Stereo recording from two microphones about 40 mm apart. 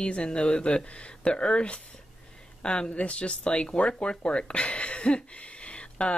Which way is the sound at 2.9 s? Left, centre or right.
Left.